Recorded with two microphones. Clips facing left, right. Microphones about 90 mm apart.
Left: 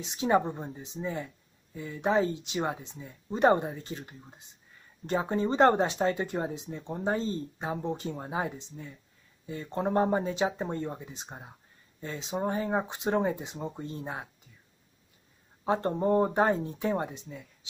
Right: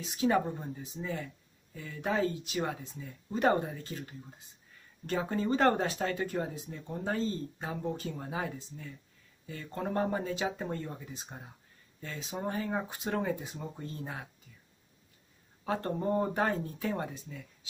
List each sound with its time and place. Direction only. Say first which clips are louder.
0.0 s speech: left 2 dB; 25° left (ahead or behind)
15.6 s speech: left 5 dB; 25° left (ahead or behind)